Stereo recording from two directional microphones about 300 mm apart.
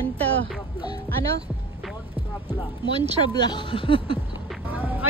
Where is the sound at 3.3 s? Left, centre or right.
Centre.